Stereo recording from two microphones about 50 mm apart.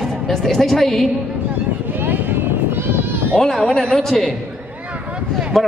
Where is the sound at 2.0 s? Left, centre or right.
Right.